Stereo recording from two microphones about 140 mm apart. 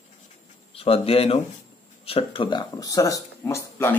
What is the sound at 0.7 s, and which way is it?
A man's voice, 45° left (ahead or behind).